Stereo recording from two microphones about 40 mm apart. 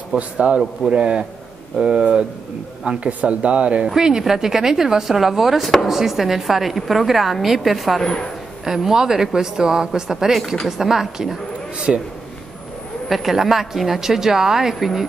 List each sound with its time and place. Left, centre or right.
0.1 s a man's voice: right
3.9 s a woman's voice: centre
8.0 s a man's voice: centre
8.6 s speech: centre
13.1 s speech: centre